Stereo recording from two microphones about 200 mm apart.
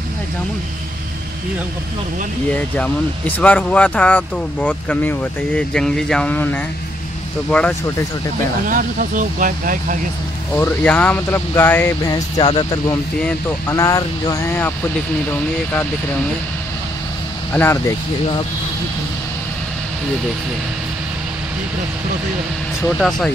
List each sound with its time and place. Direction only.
2.5 s speech: 10° left (ahead or behind)
8.6 s speech: 45° right (ahead or behind)
10.5 s speech: 10° left (ahead or behind)
17.5 s speech: 10° left (ahead or behind)
22.8 s speech: centre (ahead or behind)